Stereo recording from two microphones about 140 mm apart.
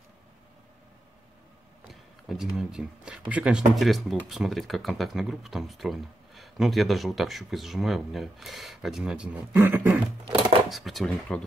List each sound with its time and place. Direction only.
1.9 s speech: centre (ahead or behind)
10.3 s speech: centre (ahead or behind)